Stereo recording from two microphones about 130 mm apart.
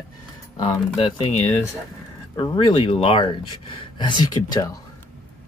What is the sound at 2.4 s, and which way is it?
Speech, 35° left (ahead or behind).